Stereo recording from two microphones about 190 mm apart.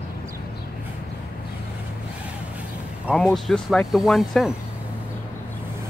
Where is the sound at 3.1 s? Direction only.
Centre (ahead or behind).